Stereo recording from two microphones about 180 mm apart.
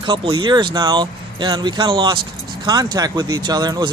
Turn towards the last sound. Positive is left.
turn(degrees=-20)  # may be behind; listen again after turning